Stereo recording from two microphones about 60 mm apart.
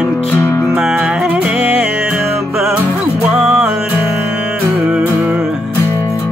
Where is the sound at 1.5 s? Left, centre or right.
Right.